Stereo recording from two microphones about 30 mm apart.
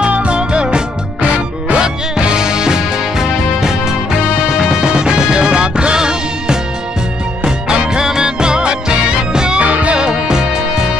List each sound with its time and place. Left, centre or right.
0.2 s music: right; by 4.8 s centre
4.8 s music: right
8.0 s music: right
9.6 s music: right
9.9 s music: right